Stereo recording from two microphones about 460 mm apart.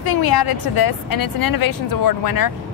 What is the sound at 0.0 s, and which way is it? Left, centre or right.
A woman's voice, left.